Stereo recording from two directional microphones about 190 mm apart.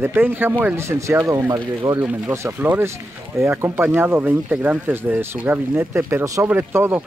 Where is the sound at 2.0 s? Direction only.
10° right (ahead or behind).